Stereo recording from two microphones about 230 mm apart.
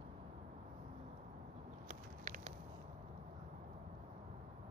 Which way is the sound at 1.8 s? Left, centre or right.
Right.